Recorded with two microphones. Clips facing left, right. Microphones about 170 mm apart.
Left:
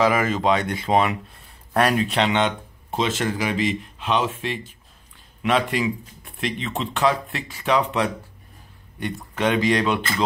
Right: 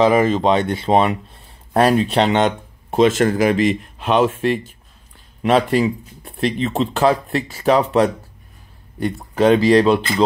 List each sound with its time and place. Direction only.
0.0 s speech: 25° right (ahead or behind)
2.9 s speech: 50° right (ahead or behind)
5.4 s speech: 35° right (ahead or behind)